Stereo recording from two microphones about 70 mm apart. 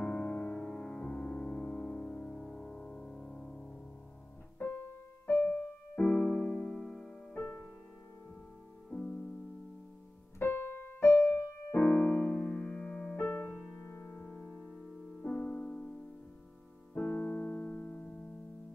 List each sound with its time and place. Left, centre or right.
0.0 s music: centre
4.6 s music: left
5.9 s music: centre
6.7 s music: centre
8.9 s music: centre
10.4 s keyboard: left
12.2 s music: centre
13.2 s music: left; by 15.9 s centre
16.9 s music: left